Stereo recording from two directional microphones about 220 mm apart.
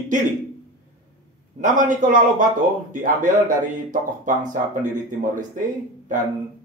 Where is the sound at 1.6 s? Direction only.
35° right (ahead or behind).